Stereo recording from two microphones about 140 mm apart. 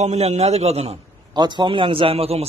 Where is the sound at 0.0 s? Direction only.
55° right (ahead or behind).